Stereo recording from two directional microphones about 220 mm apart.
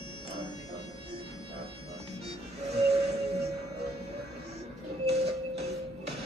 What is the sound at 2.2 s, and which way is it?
Music, 30° right (ahead or behind).